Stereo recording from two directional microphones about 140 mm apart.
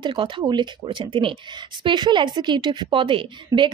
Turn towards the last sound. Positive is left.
turn(degrees=-35)  # may be behind; listen again after turning